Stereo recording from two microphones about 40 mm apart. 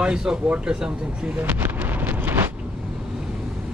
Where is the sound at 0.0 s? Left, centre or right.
Centre.